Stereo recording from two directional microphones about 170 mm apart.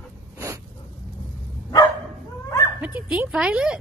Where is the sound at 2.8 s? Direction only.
10° right (ahead or behind).